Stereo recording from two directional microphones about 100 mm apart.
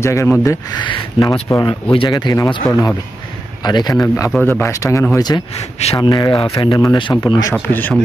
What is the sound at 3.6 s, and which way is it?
Speech, 45° left (ahead or behind).